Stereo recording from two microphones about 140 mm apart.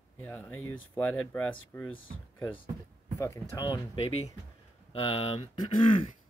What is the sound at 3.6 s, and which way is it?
Speech, 35° left (ahead or behind).